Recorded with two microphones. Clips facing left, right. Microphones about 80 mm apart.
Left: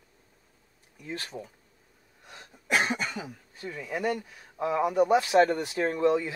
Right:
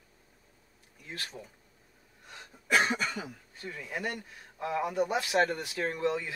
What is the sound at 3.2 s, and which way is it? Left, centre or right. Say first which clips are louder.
Speech: left 2 dB; centre.